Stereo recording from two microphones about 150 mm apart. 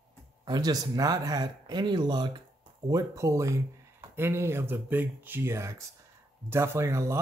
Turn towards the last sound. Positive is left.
turn(degrees=-20)  # may be behind; listen again after turning